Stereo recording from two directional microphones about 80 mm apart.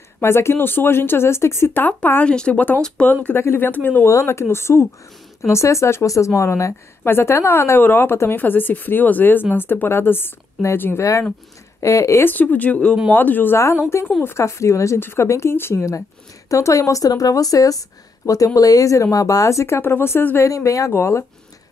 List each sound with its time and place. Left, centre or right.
0.2 s speech: left
1.7 s speech: left
3.1 s speech: left
4.1 s speech: left
11.8 s speech: left
12.3 s speech: left
13.6 s speech: left
20.4 s speech: left
20.9 s speech: left